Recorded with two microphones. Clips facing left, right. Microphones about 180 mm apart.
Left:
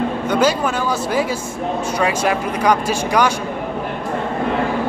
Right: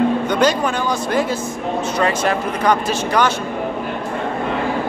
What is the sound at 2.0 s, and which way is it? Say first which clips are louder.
Speech: even; 10° left (ahead or behind).